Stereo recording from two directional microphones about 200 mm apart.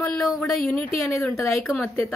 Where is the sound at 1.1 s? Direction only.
15° left (ahead or behind).